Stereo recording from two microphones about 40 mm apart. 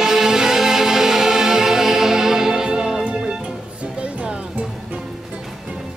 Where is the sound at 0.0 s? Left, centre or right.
Centre; by 5.0 s right.